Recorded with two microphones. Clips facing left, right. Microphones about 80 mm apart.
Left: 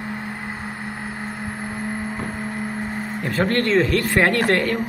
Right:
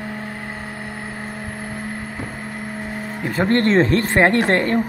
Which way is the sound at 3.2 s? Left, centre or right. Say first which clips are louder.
Right 3 dB; right.